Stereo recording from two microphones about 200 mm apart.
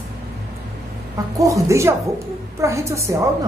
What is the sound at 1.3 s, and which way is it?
Speech, 15° right (ahead or behind).